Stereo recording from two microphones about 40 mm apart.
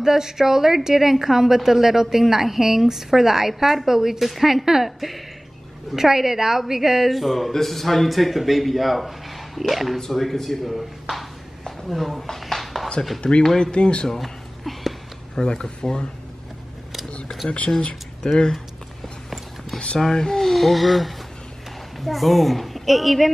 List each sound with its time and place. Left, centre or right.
0.0 s a woman's voice: centre
13.6 s speech: left
14.0 s a sound: centre
15.3 s speech: centre
17.5 s speech: left
17.8 s speech: centre
20.0 s a woman's voice: centre